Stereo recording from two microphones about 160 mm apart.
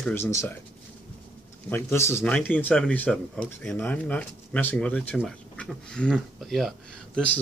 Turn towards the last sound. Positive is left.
turn(degrees=5)  # may be behind; listen again after turning